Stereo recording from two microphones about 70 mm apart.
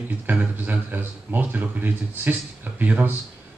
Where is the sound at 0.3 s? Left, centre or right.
Right.